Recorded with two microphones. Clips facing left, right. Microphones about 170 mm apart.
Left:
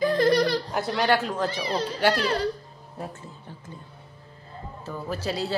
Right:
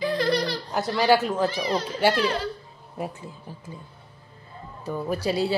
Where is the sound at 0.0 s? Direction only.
45° left (ahead or behind).